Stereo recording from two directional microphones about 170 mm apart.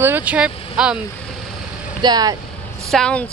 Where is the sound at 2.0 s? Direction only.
25° right (ahead or behind).